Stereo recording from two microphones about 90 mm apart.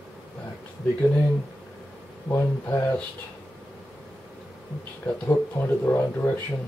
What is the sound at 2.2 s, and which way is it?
Speech, 30° left (ahead or behind).